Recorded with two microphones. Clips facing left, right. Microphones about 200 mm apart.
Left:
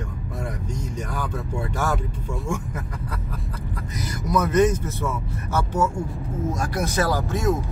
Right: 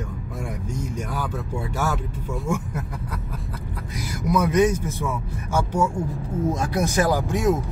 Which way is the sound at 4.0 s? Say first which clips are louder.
Right 1 dB; 10° right (ahead or behind).